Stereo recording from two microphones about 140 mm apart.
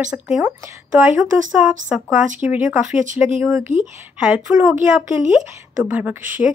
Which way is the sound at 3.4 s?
20° right (ahead or behind).